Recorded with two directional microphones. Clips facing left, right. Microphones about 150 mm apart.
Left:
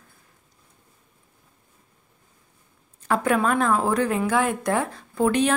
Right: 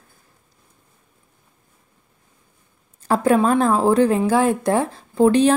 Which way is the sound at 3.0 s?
30° right (ahead or behind).